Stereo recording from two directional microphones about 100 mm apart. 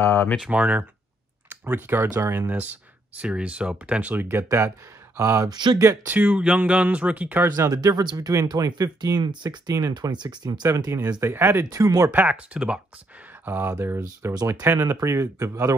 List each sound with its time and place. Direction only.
0.0 s speech: 25° left (ahead or behind)
0.4 s speech: 15° right (ahead or behind); by 5.6 s 35° right (ahead or behind)
6.0 s speech: 15° right (ahead or behind)
7.7 s speech: 40° right (ahead or behind)
11.2 s speech: 25° right (ahead or behind)
11.7 s speech: 35° right (ahead or behind)
12.1 s speech: 15° right (ahead or behind)
14.3 s speech: 40° right (ahead or behind)
14.6 s speech: 15° right (ahead or behind)
15.0 s speech: 30° right (ahead or behind)